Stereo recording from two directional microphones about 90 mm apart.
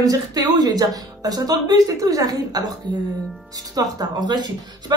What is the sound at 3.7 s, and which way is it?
Speech, 45° right (ahead or behind).